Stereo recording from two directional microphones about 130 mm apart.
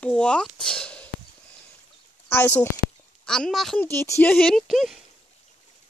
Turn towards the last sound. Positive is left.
turn(degrees=0)  # may be behind; listen again after turning